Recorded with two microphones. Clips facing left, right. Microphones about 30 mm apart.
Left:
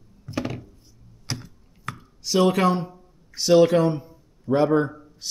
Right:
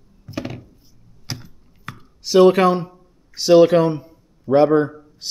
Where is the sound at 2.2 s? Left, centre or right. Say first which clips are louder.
Right 7 dB; right.